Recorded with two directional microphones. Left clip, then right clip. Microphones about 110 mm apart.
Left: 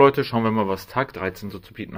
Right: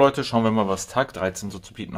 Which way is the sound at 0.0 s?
5° right (ahead or behind).